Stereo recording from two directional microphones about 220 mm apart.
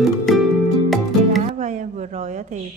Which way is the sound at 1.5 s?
35° right (ahead or behind).